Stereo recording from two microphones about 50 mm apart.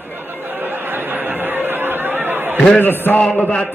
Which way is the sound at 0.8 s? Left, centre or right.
Right.